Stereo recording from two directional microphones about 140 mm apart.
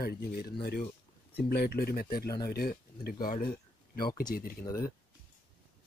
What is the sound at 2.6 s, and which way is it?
Speech, 90° left.